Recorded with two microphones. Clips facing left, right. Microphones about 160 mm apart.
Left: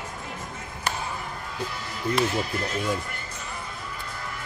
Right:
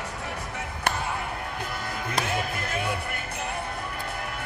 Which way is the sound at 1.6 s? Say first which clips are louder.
Right 1 dB; 55° right (ahead or behind).